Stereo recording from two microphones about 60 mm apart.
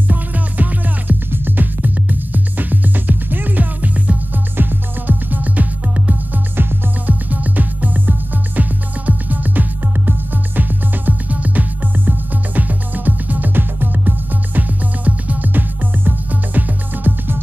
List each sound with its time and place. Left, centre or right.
0.1 s music: right
6.5 s music: right